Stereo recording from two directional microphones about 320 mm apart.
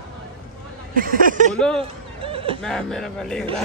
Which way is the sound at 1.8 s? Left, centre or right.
Centre.